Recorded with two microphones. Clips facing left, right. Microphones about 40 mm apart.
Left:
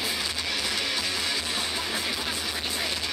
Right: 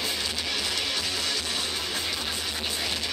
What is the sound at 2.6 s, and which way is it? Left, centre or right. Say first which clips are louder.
Vehicle: right 1 dB; centre.